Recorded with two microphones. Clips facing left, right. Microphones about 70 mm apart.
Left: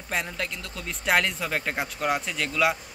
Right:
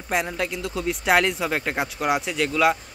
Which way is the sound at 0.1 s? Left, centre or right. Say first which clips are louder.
Right 5 dB; centre.